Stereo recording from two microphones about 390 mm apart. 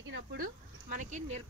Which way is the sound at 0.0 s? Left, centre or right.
Right.